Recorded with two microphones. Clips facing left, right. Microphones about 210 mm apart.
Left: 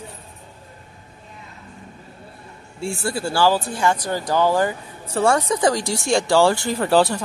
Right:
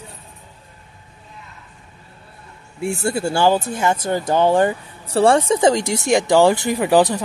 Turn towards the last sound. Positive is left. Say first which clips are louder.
# right 2 dB
turn(degrees=-15)  # may be behind; listen again after turning